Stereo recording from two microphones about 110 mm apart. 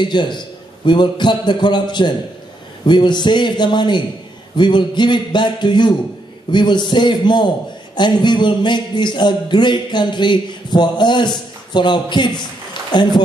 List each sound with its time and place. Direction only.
0.0 s speech: 45° left (ahead or behind)